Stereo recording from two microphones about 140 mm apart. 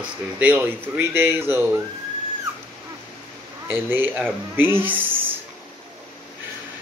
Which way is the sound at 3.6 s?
15° right (ahead or behind).